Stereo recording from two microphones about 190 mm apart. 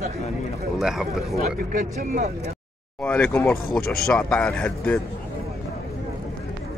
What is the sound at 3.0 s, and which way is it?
Speech, 5° left (ahead or behind).